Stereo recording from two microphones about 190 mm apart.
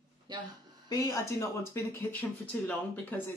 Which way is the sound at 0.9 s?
15° left (ahead or behind).